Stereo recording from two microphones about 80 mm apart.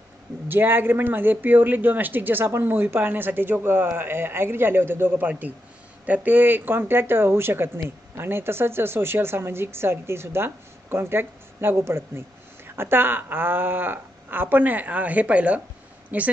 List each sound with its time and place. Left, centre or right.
0.5 s a woman's voice: right